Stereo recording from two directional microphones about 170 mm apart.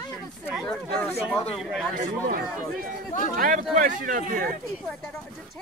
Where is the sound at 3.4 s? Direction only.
50° right (ahead or behind).